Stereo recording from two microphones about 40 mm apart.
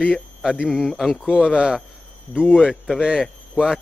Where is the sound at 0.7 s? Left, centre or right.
Centre.